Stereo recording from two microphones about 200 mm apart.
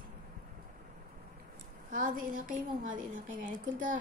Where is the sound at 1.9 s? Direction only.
40° right (ahead or behind).